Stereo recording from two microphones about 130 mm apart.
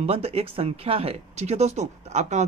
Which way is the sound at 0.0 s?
50° right (ahead or behind).